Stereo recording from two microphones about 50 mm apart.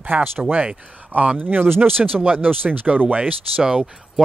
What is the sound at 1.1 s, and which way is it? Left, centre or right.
Speech, right.